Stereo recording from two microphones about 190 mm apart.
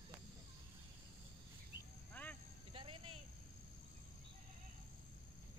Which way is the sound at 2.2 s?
10° left (ahead or behind).